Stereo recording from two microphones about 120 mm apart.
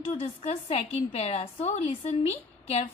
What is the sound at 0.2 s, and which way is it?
A woman's voice, 55° left (ahead or behind).